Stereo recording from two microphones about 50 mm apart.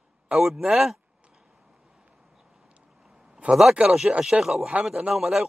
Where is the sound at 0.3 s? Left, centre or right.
Centre.